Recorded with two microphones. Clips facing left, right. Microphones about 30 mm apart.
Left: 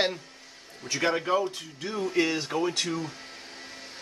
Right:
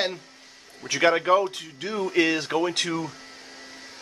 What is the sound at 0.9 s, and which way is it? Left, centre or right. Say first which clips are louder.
Speech: right 6 dB; right.